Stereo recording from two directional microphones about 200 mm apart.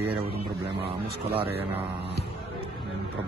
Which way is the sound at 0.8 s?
25° right (ahead or behind).